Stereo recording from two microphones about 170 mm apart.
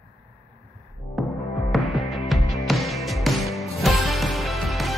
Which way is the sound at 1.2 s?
Centre (ahead or behind).